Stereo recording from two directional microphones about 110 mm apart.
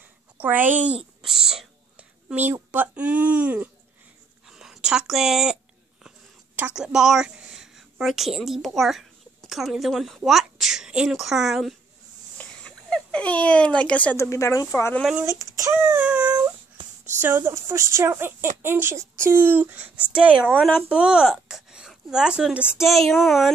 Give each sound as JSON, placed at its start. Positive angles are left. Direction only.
{"t": 0.4, "sound": "speech", "side_deg": -15}
{"t": 1.2, "sound": "whispering", "side_deg": -5}
{"t": 2.5, "sound": "speech", "side_deg": -15}
{"t": 4.5, "sound": "a sound", "side_deg": -5}
{"t": 8.4, "sound": "a child's voice", "side_deg": 0}
{"t": 12.4, "sound": "a sound", "side_deg": 10}
{"t": 14.1, "sound": "speech", "side_deg": 25}
{"t": 15.2, "sound": "speech", "side_deg": -30}
{"t": 15.7, "sound": "speech", "side_deg": -15}
{"t": 20.5, "sound": "speech", "side_deg": 0}